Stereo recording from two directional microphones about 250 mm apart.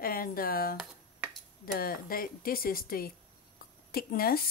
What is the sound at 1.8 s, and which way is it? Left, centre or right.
Speech, left.